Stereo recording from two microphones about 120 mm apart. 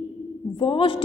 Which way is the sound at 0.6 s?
50° left (ahead or behind).